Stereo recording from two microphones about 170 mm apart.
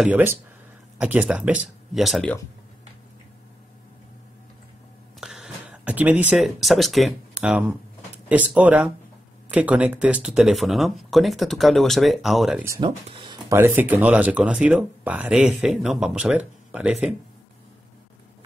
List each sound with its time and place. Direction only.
0.0 s speech: 10° right (ahead or behind)
5.2 s a sound: 5° right (ahead or behind)
6.3 s speech: centre (ahead or behind)
12.8 s speech: 30° right (ahead or behind)
13.6 s speech: 10° right (ahead or behind)